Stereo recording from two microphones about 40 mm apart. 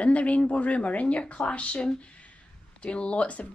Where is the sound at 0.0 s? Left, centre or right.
Left.